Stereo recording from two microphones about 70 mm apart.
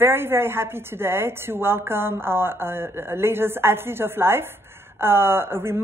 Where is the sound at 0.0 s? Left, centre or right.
Right.